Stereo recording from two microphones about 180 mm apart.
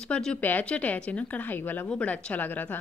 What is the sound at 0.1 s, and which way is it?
Speech, 5° left (ahead or behind).